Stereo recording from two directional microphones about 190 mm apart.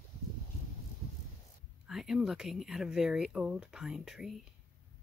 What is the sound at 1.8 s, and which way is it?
Speech, centre (ahead or behind).